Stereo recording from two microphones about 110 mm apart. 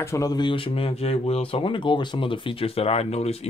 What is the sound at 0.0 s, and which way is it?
Speech, 25° left (ahead or behind).